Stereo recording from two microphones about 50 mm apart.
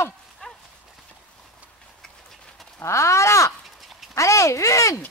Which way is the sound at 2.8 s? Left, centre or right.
Left.